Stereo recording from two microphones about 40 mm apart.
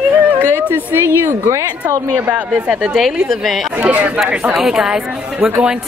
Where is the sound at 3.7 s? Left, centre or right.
Right.